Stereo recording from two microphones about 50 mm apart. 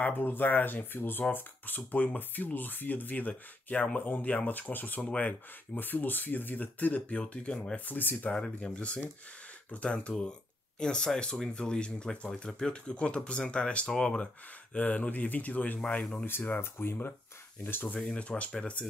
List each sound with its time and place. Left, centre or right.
0.0 s speech: left
7.8 s speech: left
8.3 s speech: centre; by 15.8 s left
15.8 s speech: left
16.7 s speech: left
17.9 s speech: centre